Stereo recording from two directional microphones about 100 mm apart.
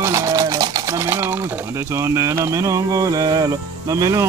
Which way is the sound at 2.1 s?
30° right (ahead or behind).